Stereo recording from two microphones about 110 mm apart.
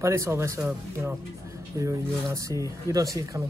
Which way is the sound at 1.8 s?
30° right (ahead or behind).